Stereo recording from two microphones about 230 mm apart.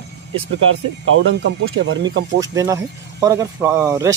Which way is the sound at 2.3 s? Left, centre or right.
Centre.